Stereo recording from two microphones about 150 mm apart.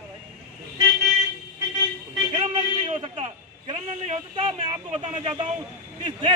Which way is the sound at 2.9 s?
40° right (ahead or behind).